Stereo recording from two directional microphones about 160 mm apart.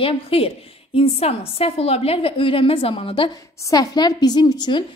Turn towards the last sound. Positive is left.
turn(degrees=25)  # may be behind; listen again after turning